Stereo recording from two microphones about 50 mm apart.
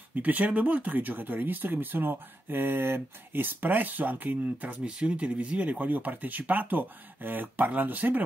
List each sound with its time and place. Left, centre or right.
0.1 s speech: right
4.8 s speech: right